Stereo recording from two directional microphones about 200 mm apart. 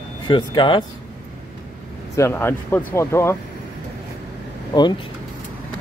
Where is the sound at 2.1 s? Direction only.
10° left (ahead or behind).